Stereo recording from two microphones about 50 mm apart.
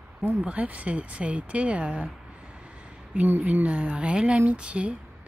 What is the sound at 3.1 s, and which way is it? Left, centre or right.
Speech, right.